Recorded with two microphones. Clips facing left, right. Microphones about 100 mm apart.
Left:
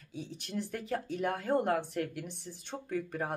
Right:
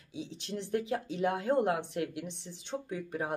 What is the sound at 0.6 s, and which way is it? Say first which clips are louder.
Speech: right 3 dB; 20° right (ahead or behind).